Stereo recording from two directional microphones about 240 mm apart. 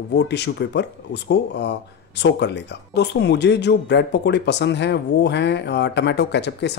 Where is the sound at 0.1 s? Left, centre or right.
Left.